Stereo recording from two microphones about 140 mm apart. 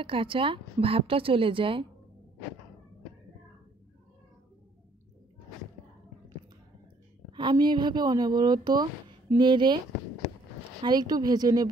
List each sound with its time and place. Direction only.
0.0 s a woman's voice: 40° right (ahead or behind)
7.3 s a woman's voice: 35° right (ahead or behind)
10.8 s a woman's voice: 30° right (ahead or behind)